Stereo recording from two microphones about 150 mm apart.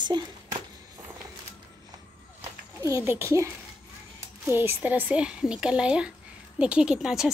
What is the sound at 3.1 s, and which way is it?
Speech, 15° right (ahead or behind).